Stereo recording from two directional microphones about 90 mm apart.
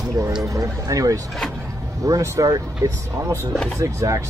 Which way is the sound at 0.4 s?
35° right (ahead or behind).